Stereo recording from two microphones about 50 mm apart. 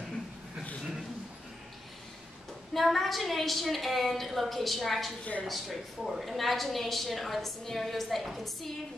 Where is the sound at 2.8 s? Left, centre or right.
Centre.